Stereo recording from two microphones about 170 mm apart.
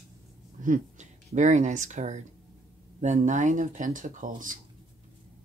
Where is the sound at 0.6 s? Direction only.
45° right (ahead or behind).